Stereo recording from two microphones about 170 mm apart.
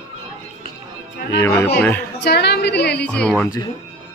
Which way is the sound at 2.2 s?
75° left (ahead or behind).